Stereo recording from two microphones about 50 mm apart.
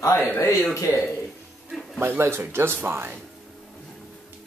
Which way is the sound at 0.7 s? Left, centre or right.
Left.